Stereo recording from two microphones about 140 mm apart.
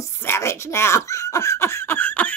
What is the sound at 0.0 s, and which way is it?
Giggle, 20° left (ahead or behind).